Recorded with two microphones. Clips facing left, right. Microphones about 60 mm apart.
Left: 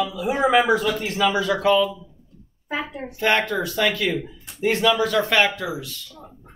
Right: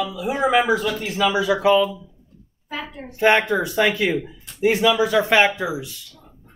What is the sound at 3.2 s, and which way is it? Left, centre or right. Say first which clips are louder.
Speech: right 4 dB; right.